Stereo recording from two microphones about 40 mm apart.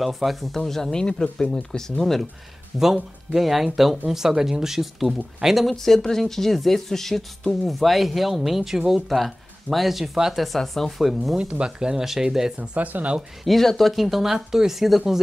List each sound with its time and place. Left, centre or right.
0.0 s speech: centre
1.0 s speech: left
2.8 s speech: centre
5.8 s speech: centre
9.1 s speech: centre
11.3 s speech: right
12.0 s speech: centre
12.5 s speech: right
13.4 s speech: centre
14.0 s speech: centre